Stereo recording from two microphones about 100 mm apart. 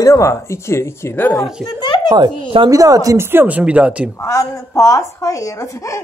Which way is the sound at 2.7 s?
35° right (ahead or behind).